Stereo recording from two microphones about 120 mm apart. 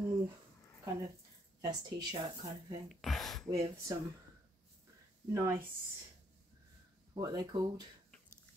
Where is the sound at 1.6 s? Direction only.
35° right (ahead or behind).